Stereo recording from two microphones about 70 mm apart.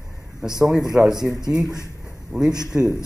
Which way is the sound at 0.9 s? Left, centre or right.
Centre.